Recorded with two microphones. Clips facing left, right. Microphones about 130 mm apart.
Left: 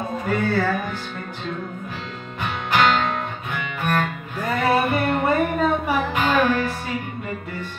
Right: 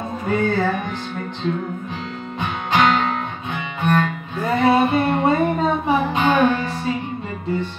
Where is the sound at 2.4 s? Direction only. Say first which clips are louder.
Right 1 dB; 20° right (ahead or behind).